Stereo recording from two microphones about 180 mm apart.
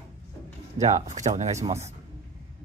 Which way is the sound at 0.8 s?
40° right (ahead or behind).